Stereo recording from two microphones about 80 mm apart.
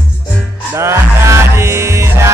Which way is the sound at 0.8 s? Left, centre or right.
Right.